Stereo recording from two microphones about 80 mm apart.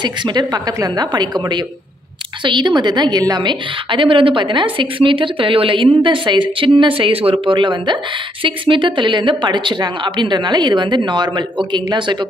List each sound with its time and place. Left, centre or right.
0.0 s a woman's voice: right
2.4 s a woman's voice: right
3.4 s a woman's voice: right